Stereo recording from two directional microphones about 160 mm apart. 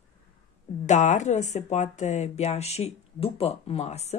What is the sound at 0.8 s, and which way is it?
Speech, 45° left (ahead or behind).